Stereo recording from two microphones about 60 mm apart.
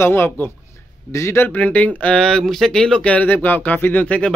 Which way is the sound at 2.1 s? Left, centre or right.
Centre.